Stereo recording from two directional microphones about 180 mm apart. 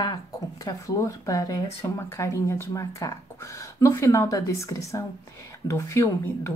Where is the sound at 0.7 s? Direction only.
15° left (ahead or behind).